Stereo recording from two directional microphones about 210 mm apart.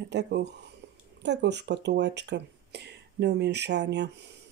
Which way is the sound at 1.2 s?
55° right (ahead or behind).